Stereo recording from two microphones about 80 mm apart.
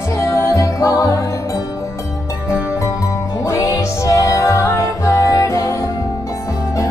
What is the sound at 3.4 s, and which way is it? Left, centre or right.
Music, left.